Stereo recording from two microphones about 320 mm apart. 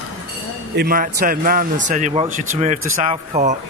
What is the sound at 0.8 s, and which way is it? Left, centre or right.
Speech, right.